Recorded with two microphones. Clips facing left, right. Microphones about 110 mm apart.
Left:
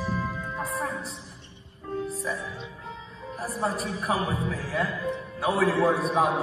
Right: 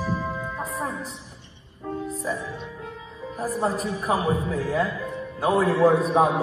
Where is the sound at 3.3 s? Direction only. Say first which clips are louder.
Right 4 dB; 25° right (ahead or behind).